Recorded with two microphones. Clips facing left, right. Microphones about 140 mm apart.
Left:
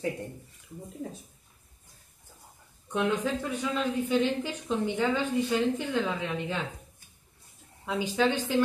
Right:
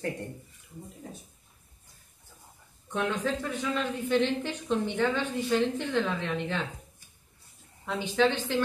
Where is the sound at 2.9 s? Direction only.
10° left (ahead or behind).